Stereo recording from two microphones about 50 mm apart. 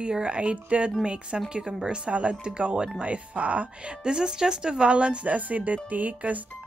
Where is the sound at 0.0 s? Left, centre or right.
Right.